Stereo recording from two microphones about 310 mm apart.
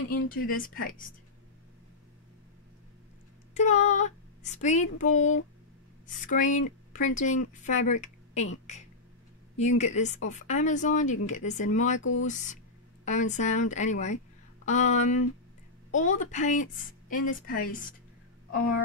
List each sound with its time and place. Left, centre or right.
0.1 s a woman's voice: left
3.5 s a woman's voice: left
9.6 s a woman's voice: left
12.0 s speech: left
12.3 s a woman's voice: left